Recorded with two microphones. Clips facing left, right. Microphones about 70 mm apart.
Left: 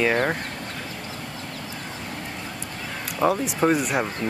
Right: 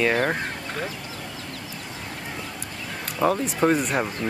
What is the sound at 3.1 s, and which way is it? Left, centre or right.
Speech, centre.